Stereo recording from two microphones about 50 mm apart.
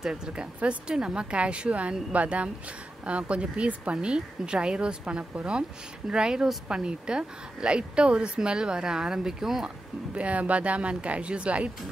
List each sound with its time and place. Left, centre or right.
0.0 s speech: centre
10.1 s speech: right